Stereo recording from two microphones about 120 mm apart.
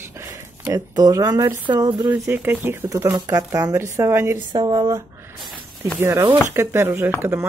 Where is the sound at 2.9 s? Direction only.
30° right (ahead or behind).